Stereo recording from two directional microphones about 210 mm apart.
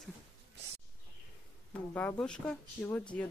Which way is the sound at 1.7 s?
5° left (ahead or behind).